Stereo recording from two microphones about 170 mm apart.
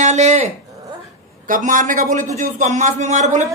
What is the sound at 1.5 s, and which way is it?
A man's voice, 50° right (ahead or behind).